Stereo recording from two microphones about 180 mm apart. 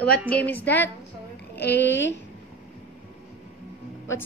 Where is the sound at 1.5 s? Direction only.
70° left (ahead or behind).